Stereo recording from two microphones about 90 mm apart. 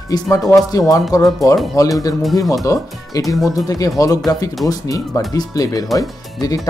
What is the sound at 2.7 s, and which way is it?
Speech, 40° left (ahead or behind).